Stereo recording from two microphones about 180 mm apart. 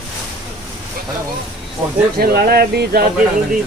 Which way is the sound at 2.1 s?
60° right (ahead or behind).